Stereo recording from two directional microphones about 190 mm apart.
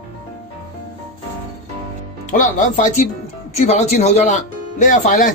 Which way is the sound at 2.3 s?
40° left (ahead or behind).